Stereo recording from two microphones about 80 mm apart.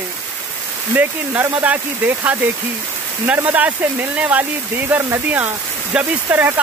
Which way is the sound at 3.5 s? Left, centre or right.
Centre.